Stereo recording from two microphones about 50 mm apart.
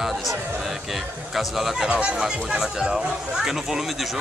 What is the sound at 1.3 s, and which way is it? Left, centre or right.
Speech, centre.